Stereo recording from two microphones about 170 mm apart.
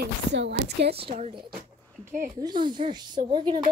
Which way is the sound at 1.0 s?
35° right (ahead or behind).